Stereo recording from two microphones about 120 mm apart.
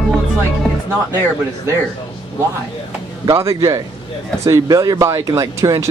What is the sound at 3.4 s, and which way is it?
Speech, 25° right (ahead or behind).